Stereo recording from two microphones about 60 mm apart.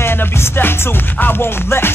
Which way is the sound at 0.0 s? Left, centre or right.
Left.